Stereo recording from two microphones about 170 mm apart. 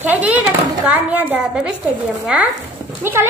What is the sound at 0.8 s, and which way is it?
A woman's voice, 10° right (ahead or behind).